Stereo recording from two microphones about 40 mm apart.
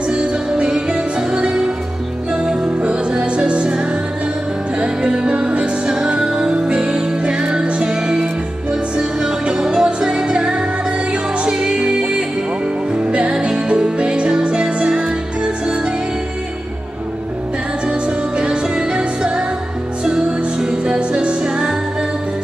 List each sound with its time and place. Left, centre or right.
0.1 s music: right
2.7 s music: right
17.8 s music: right